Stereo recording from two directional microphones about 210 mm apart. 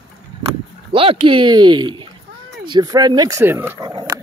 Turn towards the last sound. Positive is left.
turn(degrees=-20)  # may be behind; listen again after turning